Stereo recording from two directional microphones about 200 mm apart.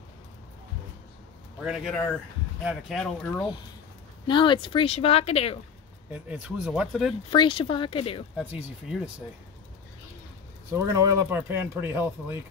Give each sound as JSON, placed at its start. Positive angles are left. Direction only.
{"t": 1.6, "sound": "speech", "side_deg": -5}
{"t": 4.3, "sound": "speech", "side_deg": 25}
{"t": 6.1, "sound": "speech", "side_deg": -5}
{"t": 7.2, "sound": "speech", "side_deg": 25}
{"t": 8.4, "sound": "speech", "side_deg": -5}
{"t": 10.7, "sound": "speech", "side_deg": -15}